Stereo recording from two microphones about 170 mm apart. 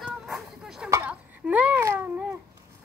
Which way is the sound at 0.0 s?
Centre (ahead or behind).